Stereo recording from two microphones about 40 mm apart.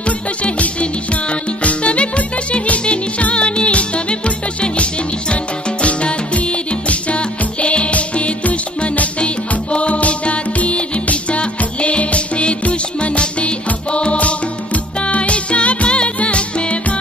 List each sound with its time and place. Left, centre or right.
0.4 s music: left
7.6 s music: left
9.2 s music: left